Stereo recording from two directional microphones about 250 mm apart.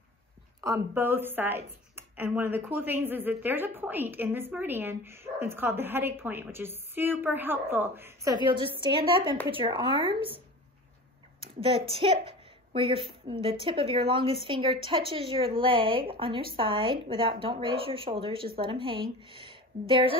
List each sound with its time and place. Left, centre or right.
0.6 s a woman's voice: centre
11.9 s a woman's voice: right